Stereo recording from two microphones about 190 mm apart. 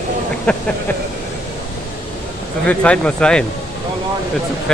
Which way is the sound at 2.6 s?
5° left (ahead or behind).